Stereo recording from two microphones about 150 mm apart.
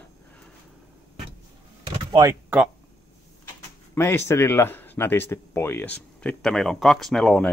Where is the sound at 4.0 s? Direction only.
15° left (ahead or behind).